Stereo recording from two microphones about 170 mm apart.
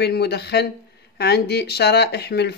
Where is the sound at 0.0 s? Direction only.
75° left (ahead or behind).